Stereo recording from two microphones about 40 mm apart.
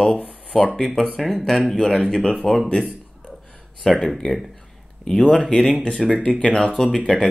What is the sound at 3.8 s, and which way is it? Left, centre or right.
Speech, centre.